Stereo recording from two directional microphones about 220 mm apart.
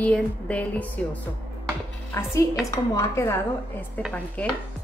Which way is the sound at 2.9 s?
10° left (ahead or behind).